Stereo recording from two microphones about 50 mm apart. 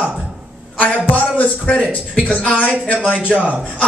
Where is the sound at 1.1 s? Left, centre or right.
Left.